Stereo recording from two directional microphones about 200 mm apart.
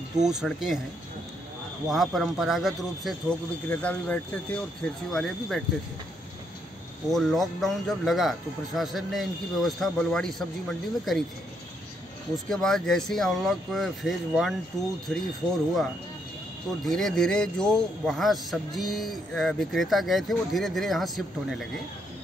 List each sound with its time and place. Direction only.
0.2 s a man's voice: centre (ahead or behind)
1.9 s a man's voice: centre (ahead or behind)
7.1 s a man's voice: centre (ahead or behind)
12.4 s a man's voice: 5° left (ahead or behind)
14.7 s speech: 15° left (ahead or behind)
15.4 s a man's voice: 5° left (ahead or behind)
16.8 s a man's voice: 5° left (ahead or behind)